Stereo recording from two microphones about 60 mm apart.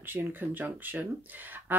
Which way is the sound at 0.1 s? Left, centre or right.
Right.